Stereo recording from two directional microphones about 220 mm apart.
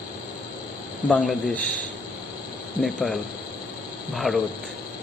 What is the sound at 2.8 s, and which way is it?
Speech, centre (ahead or behind).